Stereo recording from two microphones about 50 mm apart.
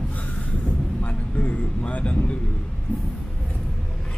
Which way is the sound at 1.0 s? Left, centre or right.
Left.